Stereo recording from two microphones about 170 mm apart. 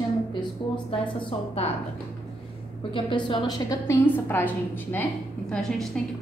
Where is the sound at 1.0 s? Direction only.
35° left (ahead or behind).